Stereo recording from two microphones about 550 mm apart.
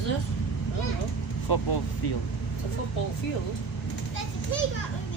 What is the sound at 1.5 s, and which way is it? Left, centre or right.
Speech, left.